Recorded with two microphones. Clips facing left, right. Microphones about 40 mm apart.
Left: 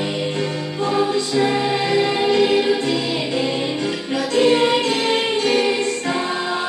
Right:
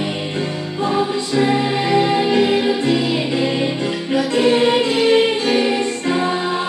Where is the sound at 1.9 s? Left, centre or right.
Right.